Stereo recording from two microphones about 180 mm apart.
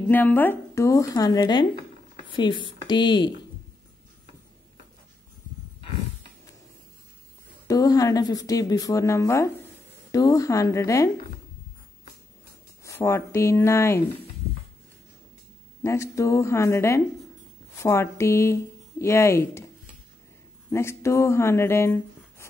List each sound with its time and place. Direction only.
0.0 s speech: 10° left (ahead or behind)
7.6 s speech: 20° left (ahead or behind)
12.8 s speech: 15° left (ahead or behind)
15.8 s speech: 15° left (ahead or behind)
20.7 s speech: 15° left (ahead or behind)